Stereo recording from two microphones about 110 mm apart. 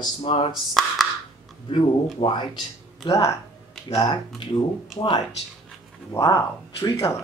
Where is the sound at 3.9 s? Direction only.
40° left (ahead or behind).